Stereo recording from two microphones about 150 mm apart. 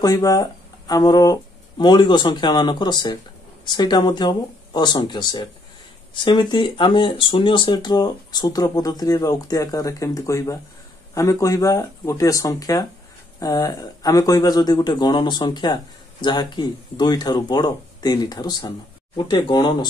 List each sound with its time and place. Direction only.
0.0 s speech: 25° left (ahead or behind)